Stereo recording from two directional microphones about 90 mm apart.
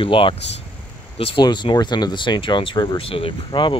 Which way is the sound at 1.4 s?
55° left (ahead or behind).